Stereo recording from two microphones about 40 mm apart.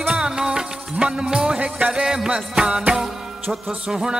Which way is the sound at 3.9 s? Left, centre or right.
Centre.